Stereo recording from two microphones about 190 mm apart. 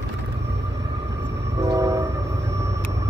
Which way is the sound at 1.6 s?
15° right (ahead or behind).